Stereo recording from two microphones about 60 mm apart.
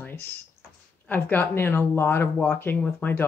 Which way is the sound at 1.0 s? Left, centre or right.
Left.